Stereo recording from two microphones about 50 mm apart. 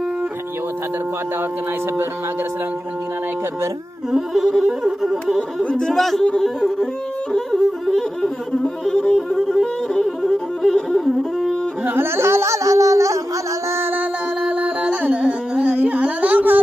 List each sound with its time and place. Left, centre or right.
4.1 s music: centre
4.6 s a sound: centre
5.8 s music: centre
9.3 s music: centre
11.8 s carnatic music: right
12.2 s music: right
13.7 s music: right
14.4 s carnatic music: right